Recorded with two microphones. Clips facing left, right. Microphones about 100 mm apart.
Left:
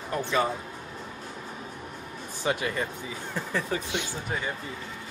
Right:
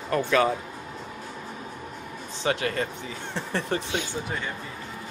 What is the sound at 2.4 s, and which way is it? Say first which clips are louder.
Speech: right 2 dB; 65° right (ahead or behind).